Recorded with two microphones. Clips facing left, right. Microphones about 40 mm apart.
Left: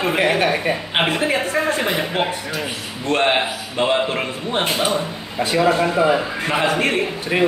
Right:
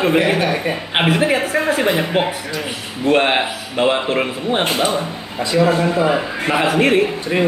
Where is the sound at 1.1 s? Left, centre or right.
Centre.